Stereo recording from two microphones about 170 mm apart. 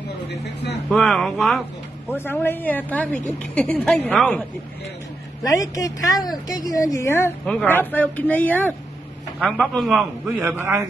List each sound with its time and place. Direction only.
0.8 s speech: centre (ahead or behind)
2.1 s a woman's voice: 15° left (ahead or behind)
5.4 s a woman's voice: 20° left (ahead or behind); by 10.0 s centre (ahead or behind)
10.2 s a man's voice: 15° right (ahead or behind)